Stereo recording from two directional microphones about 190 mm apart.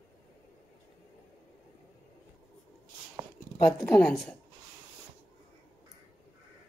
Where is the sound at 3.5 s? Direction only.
20° left (ahead or behind).